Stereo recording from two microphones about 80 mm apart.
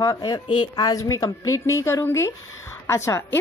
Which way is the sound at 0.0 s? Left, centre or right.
Left.